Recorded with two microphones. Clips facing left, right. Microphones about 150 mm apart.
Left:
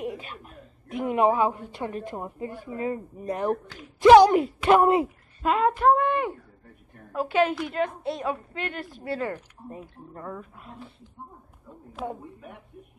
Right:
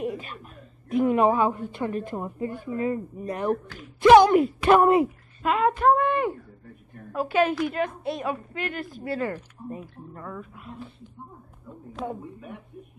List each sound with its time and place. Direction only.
0.0 s chuckle: 15° left (ahead or behind)
0.8 s a woman's voice: 15° left (ahead or behind)
5.4 s a sound: 35° left (ahead or behind)
5.9 s speech: 15° left (ahead or behind)
7.2 s a woman's voice: 20° left (ahead or behind)
11.9 s a sound: 5° left (ahead or behind)